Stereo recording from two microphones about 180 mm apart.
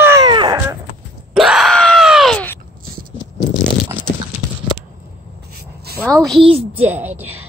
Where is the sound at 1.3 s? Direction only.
Centre (ahead or behind).